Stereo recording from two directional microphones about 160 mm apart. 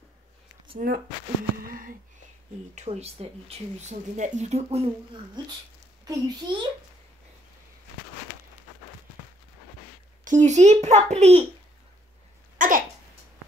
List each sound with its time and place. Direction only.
0.7 s speech: 60° right (ahead or behind)
1.6 s a sound: 60° right (ahead or behind)
2.7 s speech: 45° right (ahead or behind)
6.0 s a child's voice: 25° right (ahead or behind)
10.2 s a child's voice: 50° right (ahead or behind)
12.5 s a sound: 60° right (ahead or behind)